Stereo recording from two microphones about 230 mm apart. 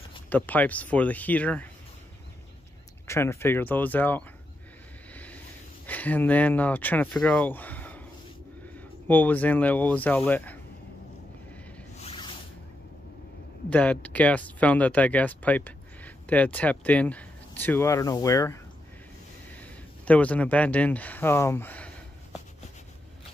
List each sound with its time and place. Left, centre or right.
0.3 s speech: centre
3.1 s speech: centre
5.1 s a sound: centre
5.9 s speech: centre
12.0 s a sound: left
13.7 s speech: centre
20.1 s speech: centre